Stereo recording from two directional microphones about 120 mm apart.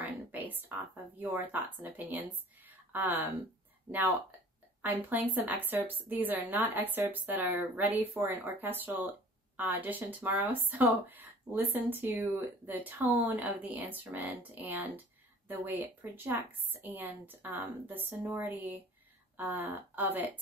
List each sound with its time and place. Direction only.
0.0 s speech: 15° right (ahead or behind)
4.8 s a woman's voice: 15° right (ahead or behind)